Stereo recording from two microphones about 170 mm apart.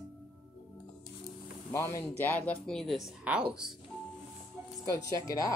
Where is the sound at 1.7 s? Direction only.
15° left (ahead or behind); by 3.7 s 5° right (ahead or behind).